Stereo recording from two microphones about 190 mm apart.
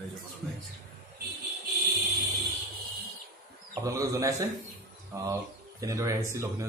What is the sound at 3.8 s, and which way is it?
Speech, 15° right (ahead or behind).